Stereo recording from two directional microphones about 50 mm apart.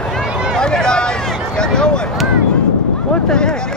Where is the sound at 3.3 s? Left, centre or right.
Centre.